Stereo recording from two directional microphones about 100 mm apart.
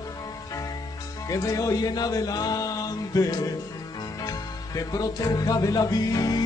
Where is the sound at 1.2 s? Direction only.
35° left (ahead or behind).